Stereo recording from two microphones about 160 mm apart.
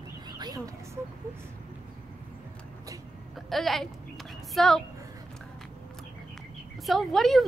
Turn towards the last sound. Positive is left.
turn(degrees=0)  # may be behind; listen again after turning